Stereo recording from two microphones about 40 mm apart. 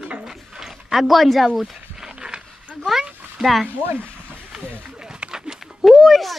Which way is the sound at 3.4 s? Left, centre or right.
Centre.